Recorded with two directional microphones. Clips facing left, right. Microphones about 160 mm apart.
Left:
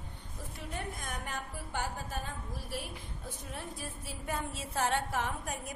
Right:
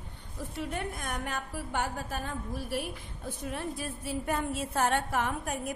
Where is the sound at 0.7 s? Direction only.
65° right (ahead or behind).